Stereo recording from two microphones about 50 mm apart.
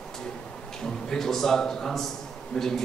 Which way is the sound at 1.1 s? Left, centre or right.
Centre.